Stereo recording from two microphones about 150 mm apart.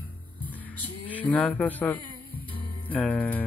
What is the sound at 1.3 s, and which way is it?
Speech, 10° left (ahead or behind).